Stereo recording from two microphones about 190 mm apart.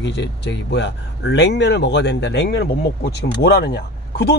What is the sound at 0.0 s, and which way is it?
Speech, 65° left (ahead or behind).